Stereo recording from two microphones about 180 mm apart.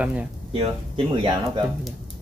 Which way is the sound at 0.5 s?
30° right (ahead or behind).